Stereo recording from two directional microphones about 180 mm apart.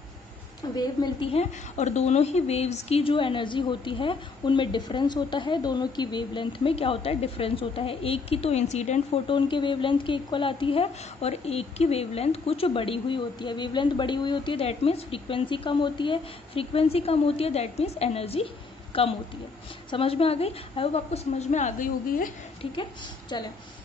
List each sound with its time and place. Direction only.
0.7 s a woman's voice: 25° left (ahead or behind)
1.3 s speech: 40° left (ahead or behind)
9.3 s speech: 25° left (ahead or behind); by 22.3 s 50° left (ahead or behind)